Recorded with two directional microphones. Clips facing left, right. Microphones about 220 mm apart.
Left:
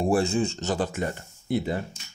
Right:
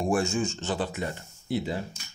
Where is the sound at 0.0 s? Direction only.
35° left (ahead or behind); by 1.8 s 50° left (ahead or behind).